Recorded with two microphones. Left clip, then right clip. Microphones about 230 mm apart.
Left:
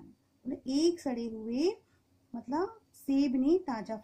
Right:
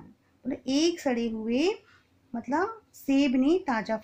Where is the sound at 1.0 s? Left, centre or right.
Right.